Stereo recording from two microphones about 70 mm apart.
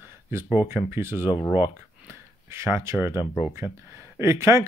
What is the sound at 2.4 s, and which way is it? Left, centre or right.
Speech, right.